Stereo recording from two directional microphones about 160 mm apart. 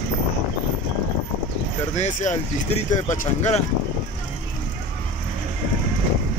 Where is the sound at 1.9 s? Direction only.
45° left (ahead or behind).